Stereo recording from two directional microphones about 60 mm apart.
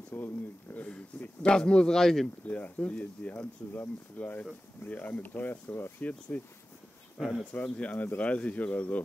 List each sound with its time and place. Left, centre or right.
0.1 s speech: left
1.5 s speech: centre
2.4 s speech: left
6.3 s speech: left
7.2 s speech: centre
7.5 s speech: left